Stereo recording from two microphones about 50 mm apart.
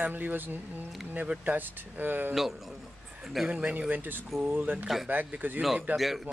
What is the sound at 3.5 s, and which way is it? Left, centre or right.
Speech, right.